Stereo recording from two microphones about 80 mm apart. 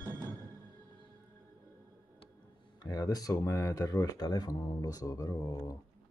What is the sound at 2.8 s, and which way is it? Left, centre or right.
Speech, left.